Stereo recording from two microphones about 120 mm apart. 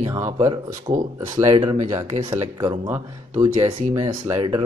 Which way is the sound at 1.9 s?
30° right (ahead or behind).